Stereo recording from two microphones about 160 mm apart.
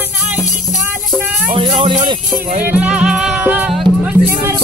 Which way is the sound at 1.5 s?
30° right (ahead or behind).